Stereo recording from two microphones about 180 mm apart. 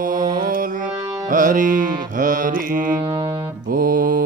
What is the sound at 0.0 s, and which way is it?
Music, 50° right (ahead or behind).